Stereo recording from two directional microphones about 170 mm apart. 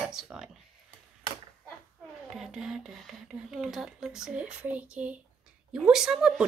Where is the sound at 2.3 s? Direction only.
5° right (ahead or behind).